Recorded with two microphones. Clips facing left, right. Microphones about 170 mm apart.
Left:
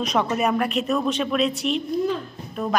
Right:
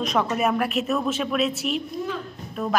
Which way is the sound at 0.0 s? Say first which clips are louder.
Left 1 dB; centre (ahead or behind).